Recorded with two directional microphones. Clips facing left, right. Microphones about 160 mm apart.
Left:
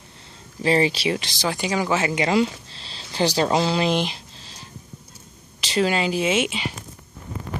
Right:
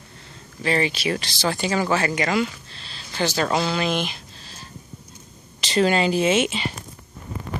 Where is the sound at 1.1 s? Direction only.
15° left (ahead or behind).